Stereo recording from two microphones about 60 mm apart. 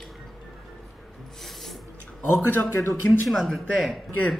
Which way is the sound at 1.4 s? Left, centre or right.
Centre.